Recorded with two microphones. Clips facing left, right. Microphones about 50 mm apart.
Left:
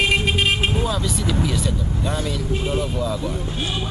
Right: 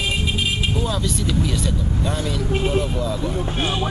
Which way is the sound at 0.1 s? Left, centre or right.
Left.